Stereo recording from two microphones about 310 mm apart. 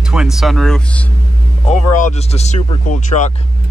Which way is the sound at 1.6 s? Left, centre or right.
Left.